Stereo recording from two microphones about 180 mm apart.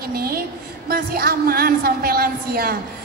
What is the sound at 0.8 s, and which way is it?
A woman's voice, 60° right (ahead or behind).